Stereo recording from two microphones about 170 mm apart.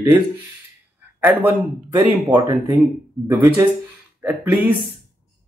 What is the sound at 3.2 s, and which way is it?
Speech, 15° right (ahead or behind).